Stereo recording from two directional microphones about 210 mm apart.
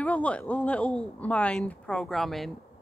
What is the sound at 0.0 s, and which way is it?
A woman's voice, 5° left (ahead or behind).